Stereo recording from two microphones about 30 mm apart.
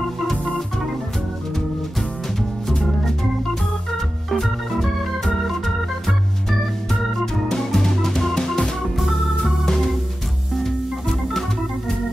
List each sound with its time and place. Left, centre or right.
2.7 s organ: centre
7.7 s music: centre
8.9 s organ: centre